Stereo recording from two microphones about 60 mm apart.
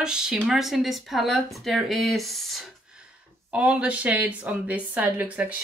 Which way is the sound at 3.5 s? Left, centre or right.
Right.